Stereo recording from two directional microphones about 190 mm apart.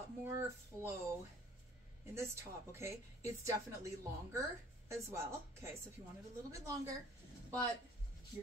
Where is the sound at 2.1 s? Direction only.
15° right (ahead or behind).